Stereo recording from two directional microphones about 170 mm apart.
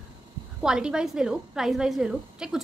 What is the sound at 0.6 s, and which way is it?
A woman's voice, 5° right (ahead or behind).